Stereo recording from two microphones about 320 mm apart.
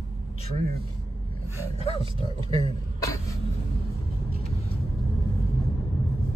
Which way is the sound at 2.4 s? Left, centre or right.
Centre.